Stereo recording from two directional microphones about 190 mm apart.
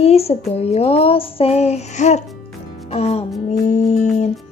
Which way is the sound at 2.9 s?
35° left (ahead or behind).